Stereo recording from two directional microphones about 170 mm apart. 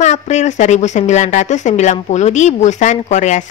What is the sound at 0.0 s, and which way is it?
A woman's voice, 40° left (ahead or behind).